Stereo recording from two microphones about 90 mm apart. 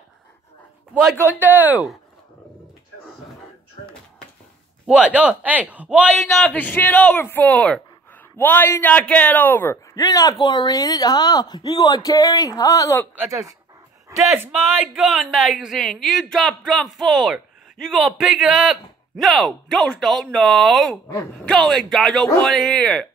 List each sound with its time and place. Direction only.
1.2 s speech: 20° right (ahead or behind)
4.8 s speech: 10° right (ahead or behind)
6.4 s a man's voice: 15° left (ahead or behind)
9.9 s speech: 45° left (ahead or behind)
10.4 s speech: 55° left (ahead or behind); by 13.0 s 40° left (ahead or behind)
13.3 s speech: 35° right (ahead or behind)
14.9 s a man's voice: 5° right (ahead or behind)